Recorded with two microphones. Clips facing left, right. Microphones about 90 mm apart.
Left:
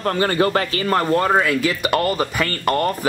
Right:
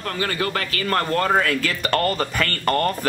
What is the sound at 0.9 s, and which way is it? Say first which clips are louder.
Speech: left 2 dB; 15° left (ahead or behind).